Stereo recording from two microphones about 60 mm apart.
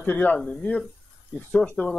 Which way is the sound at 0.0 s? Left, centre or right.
Left.